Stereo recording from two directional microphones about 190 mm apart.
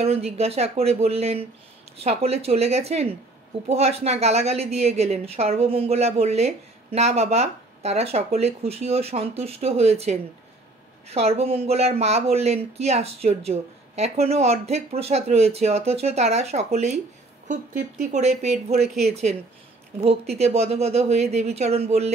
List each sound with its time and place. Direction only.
0.0 s a woman's voice: 35° right (ahead or behind)